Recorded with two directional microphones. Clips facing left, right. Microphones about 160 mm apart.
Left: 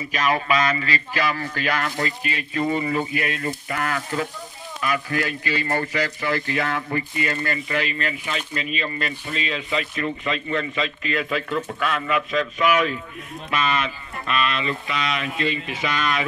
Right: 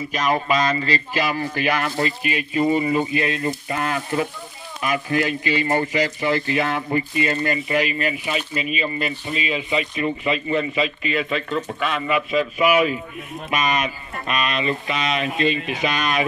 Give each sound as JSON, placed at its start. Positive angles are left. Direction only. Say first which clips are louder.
{"t": 0.7, "sound": "speech", "louder": "right 2 dB", "side_deg": -35}
{"t": 1.2, "sound": "a man's voice", "louder": "right 1 dB", "side_deg": -15}